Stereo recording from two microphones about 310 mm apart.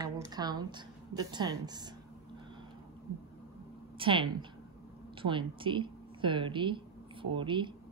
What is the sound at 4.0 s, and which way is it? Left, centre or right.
A woman's voice, centre.